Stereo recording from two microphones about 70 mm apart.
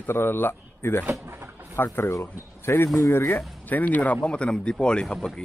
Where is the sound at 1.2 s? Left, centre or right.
Right.